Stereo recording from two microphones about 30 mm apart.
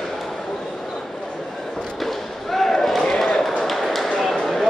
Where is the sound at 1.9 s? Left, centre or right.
Centre.